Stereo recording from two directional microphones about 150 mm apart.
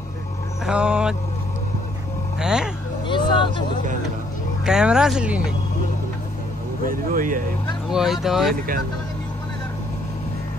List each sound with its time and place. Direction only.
0.7 s speech: 5° right (ahead or behind)
2.4 s speech: 5° right (ahead or behind)
3.1 s vehicle: 30° left (ahead or behind)
4.6 s speech: 5° right (ahead or behind)
6.9 s speech: 65° right (ahead or behind)
7.9 s speech: centre (ahead or behind)